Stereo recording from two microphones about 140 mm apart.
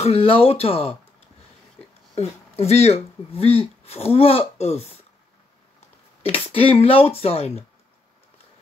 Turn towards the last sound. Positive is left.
turn(degrees=50)  # may be behind; listen again after turning